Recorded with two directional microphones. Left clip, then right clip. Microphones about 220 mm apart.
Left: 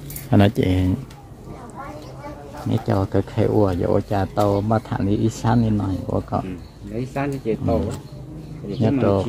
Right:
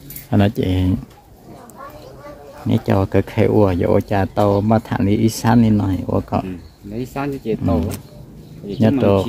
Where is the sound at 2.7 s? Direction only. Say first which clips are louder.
Right 4 dB; 20° right (ahead or behind).